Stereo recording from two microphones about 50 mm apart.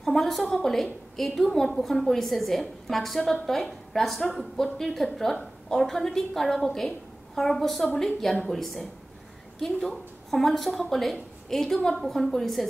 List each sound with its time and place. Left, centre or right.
0.0 s a woman's voice: centre